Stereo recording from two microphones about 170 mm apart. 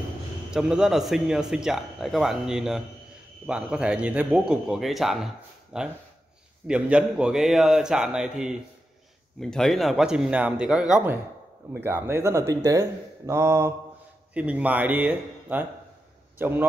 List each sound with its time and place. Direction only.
0.5 s a man's voice: 5° right (ahead or behind)